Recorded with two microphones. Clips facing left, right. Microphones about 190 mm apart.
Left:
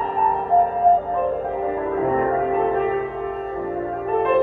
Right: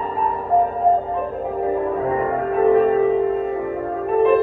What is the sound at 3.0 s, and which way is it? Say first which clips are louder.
Music: right 8 dB; 25° right (ahead or behind).